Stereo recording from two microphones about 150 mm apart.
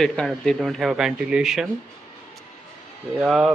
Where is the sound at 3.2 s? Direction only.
5° right (ahead or behind).